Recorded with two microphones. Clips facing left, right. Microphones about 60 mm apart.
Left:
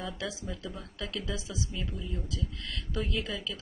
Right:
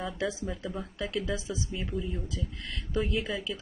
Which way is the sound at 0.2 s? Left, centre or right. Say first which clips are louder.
Right 5 dB; right.